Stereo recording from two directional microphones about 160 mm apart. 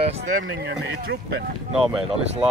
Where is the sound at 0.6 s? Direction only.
90° right.